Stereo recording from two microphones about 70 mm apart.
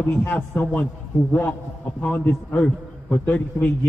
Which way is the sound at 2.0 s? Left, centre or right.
Left.